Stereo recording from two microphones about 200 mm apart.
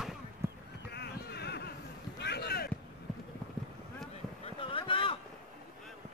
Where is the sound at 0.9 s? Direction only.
55° left (ahead or behind).